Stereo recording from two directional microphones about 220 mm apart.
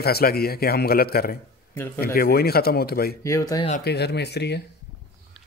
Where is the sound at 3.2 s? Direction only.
15° left (ahead or behind).